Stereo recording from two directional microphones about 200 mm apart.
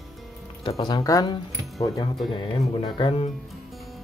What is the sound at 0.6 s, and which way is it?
Speech, 25° left (ahead or behind).